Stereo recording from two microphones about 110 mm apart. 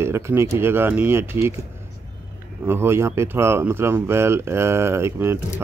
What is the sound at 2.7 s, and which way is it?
Speech, 20° right (ahead or behind).